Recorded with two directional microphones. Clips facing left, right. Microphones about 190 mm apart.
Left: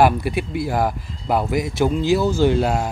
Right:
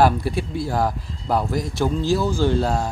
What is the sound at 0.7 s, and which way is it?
Speech, 5° left (ahead or behind).